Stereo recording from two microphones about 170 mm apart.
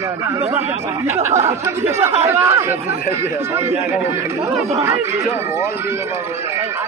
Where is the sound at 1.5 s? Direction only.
15° right (ahead or behind).